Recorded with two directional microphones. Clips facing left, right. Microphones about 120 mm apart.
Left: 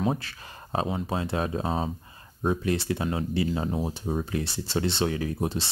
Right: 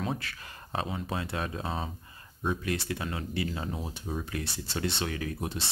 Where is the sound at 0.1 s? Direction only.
30° left (ahead or behind).